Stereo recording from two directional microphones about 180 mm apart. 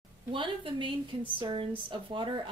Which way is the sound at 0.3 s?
25° right (ahead or behind).